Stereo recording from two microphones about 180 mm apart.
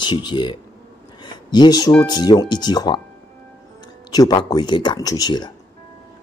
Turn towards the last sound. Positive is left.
turn(degrees=25)  # may be behind; listen again after turning